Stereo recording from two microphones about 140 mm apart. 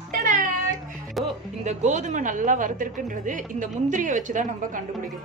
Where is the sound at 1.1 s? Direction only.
Centre (ahead or behind).